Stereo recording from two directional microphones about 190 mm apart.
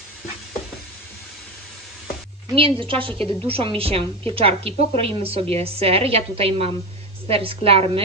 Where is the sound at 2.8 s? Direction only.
30° right (ahead or behind).